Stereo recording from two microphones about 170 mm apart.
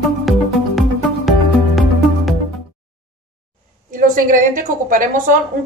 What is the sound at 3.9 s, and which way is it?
A woman's voice, 50° right (ahead or behind).